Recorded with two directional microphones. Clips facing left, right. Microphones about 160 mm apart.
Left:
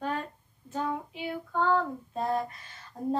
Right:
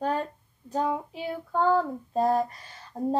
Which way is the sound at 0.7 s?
40° right (ahead or behind).